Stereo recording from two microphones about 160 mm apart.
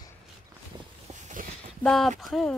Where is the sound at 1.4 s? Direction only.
60° right (ahead or behind).